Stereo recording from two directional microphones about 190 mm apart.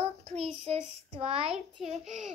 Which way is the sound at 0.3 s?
35° right (ahead or behind).